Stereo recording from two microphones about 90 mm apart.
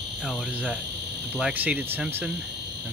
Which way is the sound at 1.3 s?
15° right (ahead or behind).